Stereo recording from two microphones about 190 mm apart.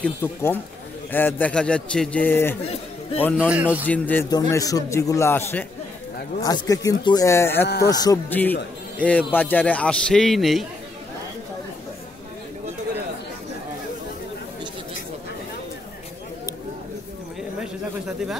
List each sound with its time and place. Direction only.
0.0 s a man's voice: 10° left (ahead or behind)
3.4 s a man's voice: 10° right (ahead or behind)
3.8 s a man's voice: 10° left (ahead or behind)
4.3 s a man's voice: 20° left (ahead or behind)
7.6 s speech: 60° left (ahead or behind)
7.9 s speech: 20° left (ahead or behind)
8.3 s a man's voice: 10° left (ahead or behind)
17.6 s a sound: centre (ahead or behind)